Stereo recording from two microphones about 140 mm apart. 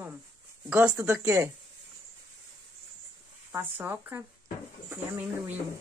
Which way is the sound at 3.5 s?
15° right (ahead or behind).